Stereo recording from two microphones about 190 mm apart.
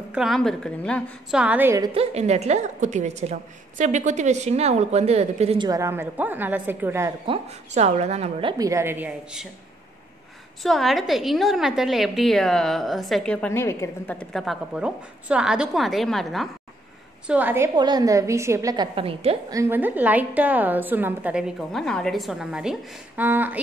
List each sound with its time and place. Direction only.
0.1 s a woman's voice: centre (ahead or behind)
1.9 s a woman's voice: 30° right (ahead or behind)
5.7 s a woman's voice: 15° right (ahead or behind)
7.2 s a woman's voice: 35° right (ahead or behind); by 9.5 s 5° right (ahead or behind)
10.6 s a woman's voice: centre (ahead or behind)
14.3 s a woman's voice: centre (ahead or behind)
17.3 s a woman's voice: 10° right (ahead or behind)
17.7 s a woman's voice: 20° right (ahead or behind)
18.9 s a woman's voice: 30° right (ahead or behind)
19.5 s a woman's voice: 15° right (ahead or behind)